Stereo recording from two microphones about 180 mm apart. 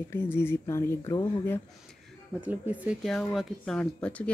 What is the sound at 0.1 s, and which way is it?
Speech, 10° left (ahead or behind).